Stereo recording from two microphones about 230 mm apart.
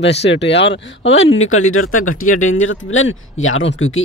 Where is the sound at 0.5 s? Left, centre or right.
Left.